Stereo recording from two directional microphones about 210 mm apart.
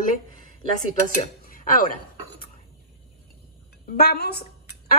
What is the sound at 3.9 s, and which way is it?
Speech, 50° left (ahead or behind).